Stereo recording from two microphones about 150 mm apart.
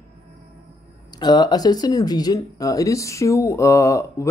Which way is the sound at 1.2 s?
30° left (ahead or behind).